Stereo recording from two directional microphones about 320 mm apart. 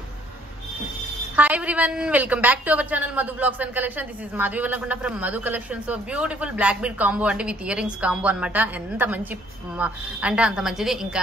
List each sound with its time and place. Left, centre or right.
1.3 s a woman's voice: centre